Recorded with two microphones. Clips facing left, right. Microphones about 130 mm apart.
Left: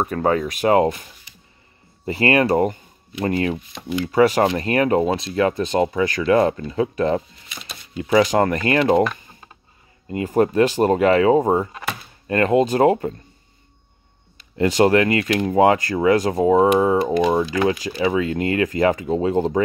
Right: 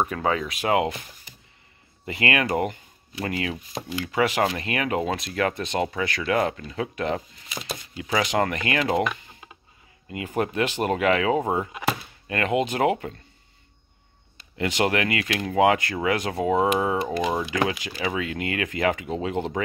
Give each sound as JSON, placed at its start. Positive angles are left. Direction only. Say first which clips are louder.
{"t": 0.1, "sound": "speech", "louder": "left 5 dB", "side_deg": 45}
{"t": 2.0, "sound": "speech", "louder": "left 7 dB", "side_deg": 35}
{"t": 10.0, "sound": "speech", "louder": "left 8 dB", "side_deg": 35}
{"t": 14.6, "sound": "speech", "louder": "left 8 dB", "side_deg": 35}